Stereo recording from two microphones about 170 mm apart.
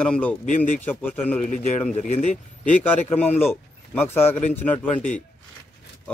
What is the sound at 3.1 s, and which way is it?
Speech, 10° left (ahead or behind).